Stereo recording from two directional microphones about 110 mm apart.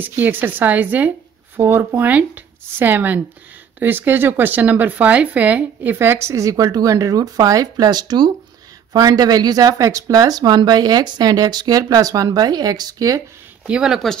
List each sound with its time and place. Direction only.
0.0 s speech: 15° right (ahead or behind); by 13.2 s 35° right (ahead or behind)
13.7 s speech: 5° right (ahead or behind)